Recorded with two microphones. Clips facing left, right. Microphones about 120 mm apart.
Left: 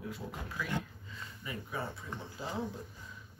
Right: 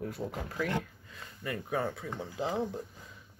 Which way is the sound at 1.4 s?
70° right (ahead or behind).